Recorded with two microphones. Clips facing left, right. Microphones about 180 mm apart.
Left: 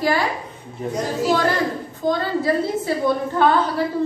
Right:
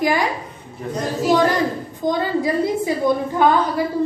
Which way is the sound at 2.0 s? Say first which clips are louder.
Right 1 dB; 15° right (ahead or behind).